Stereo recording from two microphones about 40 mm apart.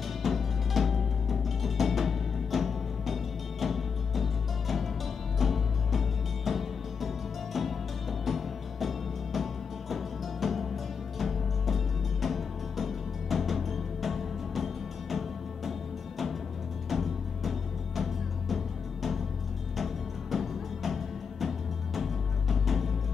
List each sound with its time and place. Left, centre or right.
0.2 s music: centre
16.9 s music: centre
19.8 s music: centre